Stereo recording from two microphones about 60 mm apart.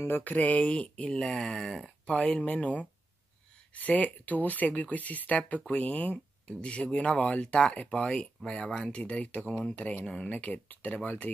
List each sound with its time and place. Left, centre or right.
0.0 s speech: left
1.3 s speech: centre
2.1 s speech: centre